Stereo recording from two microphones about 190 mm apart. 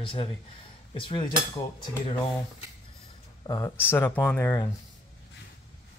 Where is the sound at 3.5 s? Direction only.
20° left (ahead or behind).